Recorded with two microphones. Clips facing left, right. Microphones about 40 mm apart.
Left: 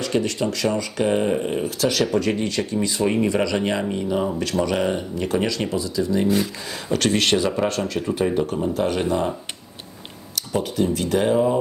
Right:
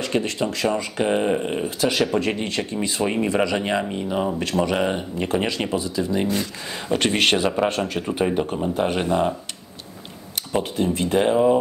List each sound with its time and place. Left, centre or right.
0.0 s speech: right
3.0 s speech: centre
6.2 s speech: centre
6.9 s speech: right
7.8 s speech: centre
8.1 s speech: right
10.3 s speech: right